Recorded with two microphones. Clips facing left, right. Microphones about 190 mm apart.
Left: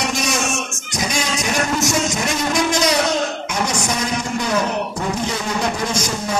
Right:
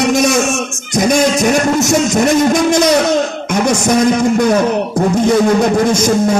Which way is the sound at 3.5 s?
50° right (ahead or behind).